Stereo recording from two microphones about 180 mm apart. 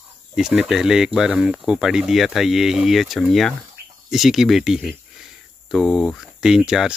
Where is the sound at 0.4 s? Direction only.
5° right (ahead or behind).